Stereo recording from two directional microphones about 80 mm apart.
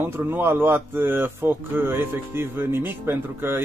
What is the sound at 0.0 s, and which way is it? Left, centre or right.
Speech, right.